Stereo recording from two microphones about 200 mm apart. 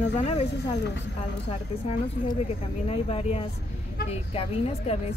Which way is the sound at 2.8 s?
30° left (ahead or behind).